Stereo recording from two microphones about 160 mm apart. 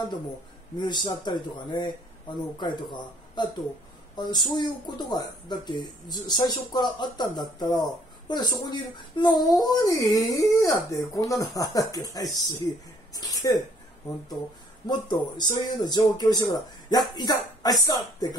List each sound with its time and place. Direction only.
0.7 s speech: 30° left (ahead or behind)
12.6 s a sound: 20° left (ahead or behind)
14.9 s speech: 25° left (ahead or behind)